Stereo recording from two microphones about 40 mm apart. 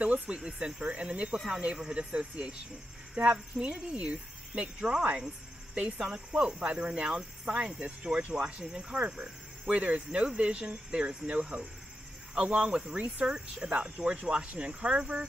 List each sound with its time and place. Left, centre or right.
0.3 s speech: centre
1.3 s speech: centre
9.8 s speech: right